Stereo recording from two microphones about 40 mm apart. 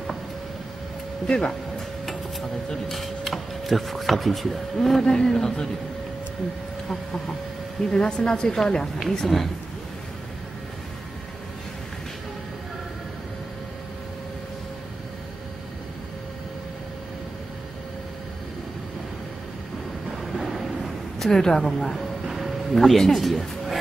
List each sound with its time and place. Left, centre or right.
1.2 s speech: left
2.9 s speech: centre
7.9 s speech: centre
9.2 s speech: centre
20.3 s vehicle: centre
21.2 s a woman's voice: centre
21.7 s speech: centre
22.3 s music: centre
23.0 s speech: centre